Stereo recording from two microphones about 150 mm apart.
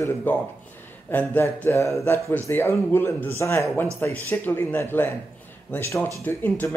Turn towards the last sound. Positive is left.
turn(degrees=15)  # may be behind; listen again after turning